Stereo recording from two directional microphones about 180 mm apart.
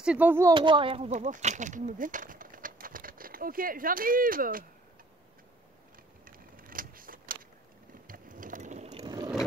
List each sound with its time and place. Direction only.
0.0 s speech: 5° right (ahead or behind)
0.6 s speech: 30° right (ahead or behind); by 4.6 s 50° right (ahead or behind)
6.2 s vehicle: 50° right (ahead or behind)
8.1 s ratchet: 50° right (ahead or behind)
9.0 s a sound: 25° right (ahead or behind)